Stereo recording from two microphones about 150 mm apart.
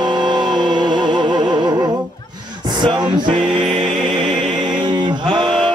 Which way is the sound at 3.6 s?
Centre (ahead or behind).